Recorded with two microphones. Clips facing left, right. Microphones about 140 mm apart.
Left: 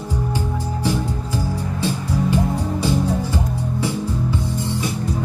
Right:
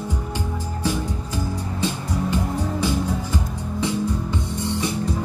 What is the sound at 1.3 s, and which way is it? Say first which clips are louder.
Music: left 3 dB; 15° right (ahead or behind).